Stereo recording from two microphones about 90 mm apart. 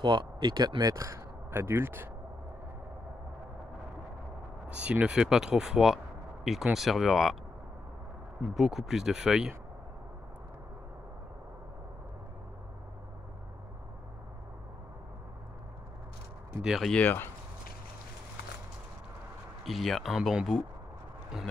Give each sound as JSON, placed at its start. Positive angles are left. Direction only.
{"t": 0.0, "sound": "speech", "side_deg": -60}
{"t": 4.6, "sound": "speech", "side_deg": -15}
{"t": 8.5, "sound": "speech", "side_deg": -5}
{"t": 16.6, "sound": "speech", "side_deg": -5}
{"t": 16.9, "sound": "speech", "side_deg": 20}
{"t": 19.6, "sound": "speech", "side_deg": 0}